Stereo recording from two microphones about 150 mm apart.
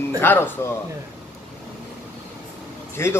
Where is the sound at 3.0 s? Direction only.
15° left (ahead or behind).